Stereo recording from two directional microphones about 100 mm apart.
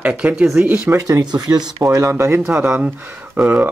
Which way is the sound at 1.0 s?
40° right (ahead or behind).